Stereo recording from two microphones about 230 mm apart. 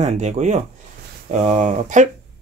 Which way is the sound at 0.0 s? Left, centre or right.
Right.